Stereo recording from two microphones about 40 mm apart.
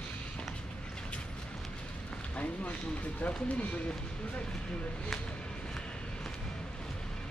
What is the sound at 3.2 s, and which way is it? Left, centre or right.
Speech, left.